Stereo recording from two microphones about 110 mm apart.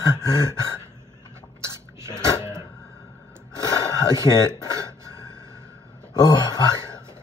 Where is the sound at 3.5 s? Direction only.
35° left (ahead or behind).